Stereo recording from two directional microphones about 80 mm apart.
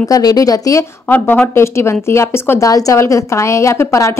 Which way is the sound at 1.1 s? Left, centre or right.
Left.